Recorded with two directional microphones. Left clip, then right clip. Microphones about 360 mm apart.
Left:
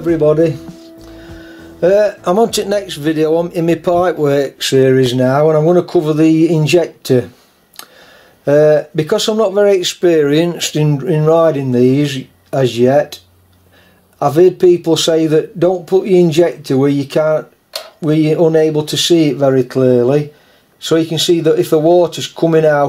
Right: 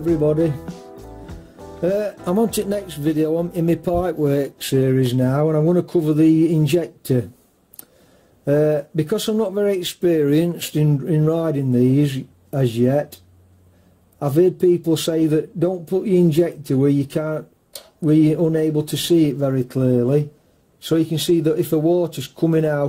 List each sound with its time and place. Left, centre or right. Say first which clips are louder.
1.8 s speech: left 10 dB; centre
8.5 s speech: left 9 dB; centre
14.2 s speech: left 7 dB; centre